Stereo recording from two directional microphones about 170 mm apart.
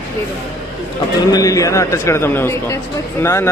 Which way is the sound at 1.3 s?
20° left (ahead or behind).